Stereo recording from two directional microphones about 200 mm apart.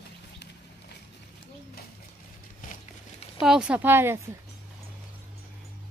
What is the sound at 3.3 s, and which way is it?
A woman's voice, 5° right (ahead or behind).